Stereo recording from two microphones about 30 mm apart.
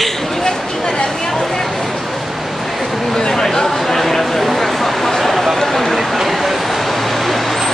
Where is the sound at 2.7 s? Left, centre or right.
Centre.